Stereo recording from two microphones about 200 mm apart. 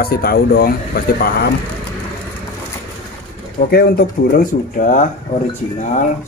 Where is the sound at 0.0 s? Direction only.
50° left (ahead or behind).